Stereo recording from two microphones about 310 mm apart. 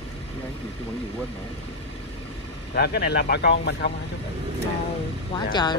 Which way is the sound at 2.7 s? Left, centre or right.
Left.